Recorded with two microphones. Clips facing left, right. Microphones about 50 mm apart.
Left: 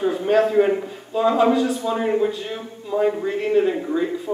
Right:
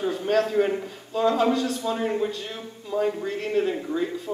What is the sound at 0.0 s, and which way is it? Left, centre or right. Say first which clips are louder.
A woman's voice: left 5 dB; centre.